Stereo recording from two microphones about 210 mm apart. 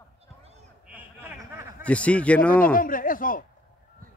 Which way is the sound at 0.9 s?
5° right (ahead or behind).